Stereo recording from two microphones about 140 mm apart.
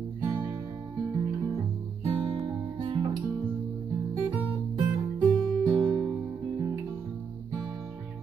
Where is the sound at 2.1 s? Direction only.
35° right (ahead or behind).